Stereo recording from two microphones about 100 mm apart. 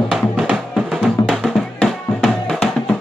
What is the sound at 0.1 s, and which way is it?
Music, 10° right (ahead or behind).